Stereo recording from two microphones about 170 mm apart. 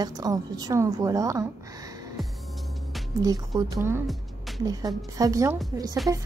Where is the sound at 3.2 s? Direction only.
25° right (ahead or behind).